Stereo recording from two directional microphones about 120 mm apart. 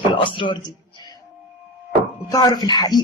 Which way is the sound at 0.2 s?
45° left (ahead or behind).